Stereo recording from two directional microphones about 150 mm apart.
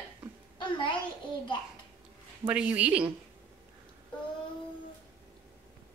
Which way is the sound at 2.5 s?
10° right (ahead or behind).